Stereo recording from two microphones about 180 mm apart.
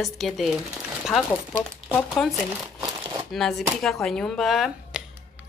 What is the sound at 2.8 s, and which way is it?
Crumpling, 25° right (ahead or behind).